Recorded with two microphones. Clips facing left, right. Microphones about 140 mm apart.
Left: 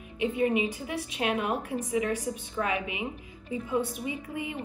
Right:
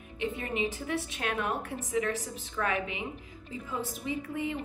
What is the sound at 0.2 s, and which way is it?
A woman's voice, 15° left (ahead or behind).